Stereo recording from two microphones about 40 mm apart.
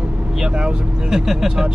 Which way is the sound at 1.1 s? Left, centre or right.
Centre.